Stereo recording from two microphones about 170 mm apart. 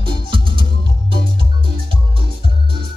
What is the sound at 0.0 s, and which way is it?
Music, 30° right (ahead or behind).